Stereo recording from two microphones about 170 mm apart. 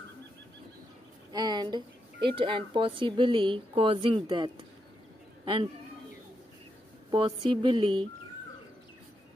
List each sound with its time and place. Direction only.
1.3 s a woman's voice: 25° right (ahead or behind)
7.1 s a woman's voice: 25° right (ahead or behind)